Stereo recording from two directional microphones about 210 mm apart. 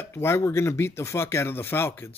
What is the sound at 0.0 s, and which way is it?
Speech, 10° left (ahead or behind).